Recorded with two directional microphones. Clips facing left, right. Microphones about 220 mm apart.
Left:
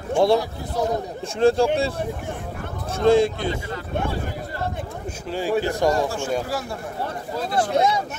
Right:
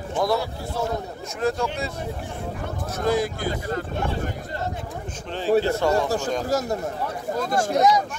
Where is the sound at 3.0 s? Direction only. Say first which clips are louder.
Left 7 dB; 25° left (ahead or behind).